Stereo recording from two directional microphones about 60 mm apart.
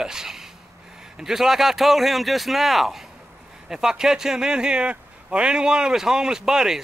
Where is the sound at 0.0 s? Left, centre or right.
Centre.